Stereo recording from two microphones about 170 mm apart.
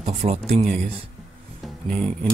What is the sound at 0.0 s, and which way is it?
Speech, 40° right (ahead or behind).